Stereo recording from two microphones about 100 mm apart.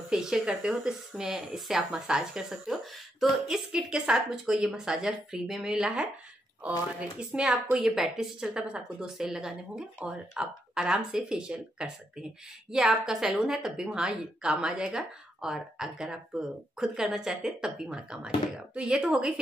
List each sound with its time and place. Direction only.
0.1 s a woman's voice: 5° right (ahead or behind)